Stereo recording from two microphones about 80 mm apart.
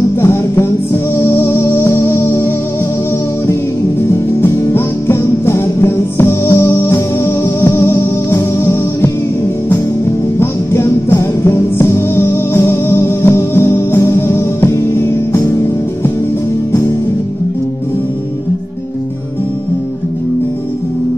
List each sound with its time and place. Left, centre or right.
0.2 s music: left
4.4 s music: left
10.4 s music: left